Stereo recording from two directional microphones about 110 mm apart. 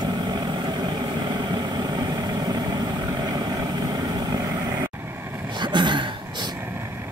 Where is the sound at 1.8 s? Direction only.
35° right (ahead or behind).